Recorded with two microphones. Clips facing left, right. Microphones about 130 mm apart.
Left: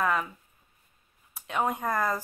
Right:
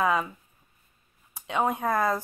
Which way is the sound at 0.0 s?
10° right (ahead or behind).